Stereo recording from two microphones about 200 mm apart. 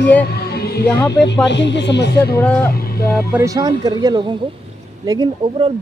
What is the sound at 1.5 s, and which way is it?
Speech, 60° left (ahead or behind).